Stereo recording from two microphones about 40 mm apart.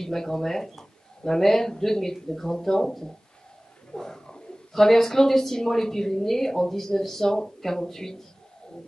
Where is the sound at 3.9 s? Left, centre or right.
Centre.